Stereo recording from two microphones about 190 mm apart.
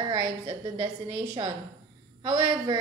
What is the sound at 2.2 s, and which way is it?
Speech, 25° right (ahead or behind).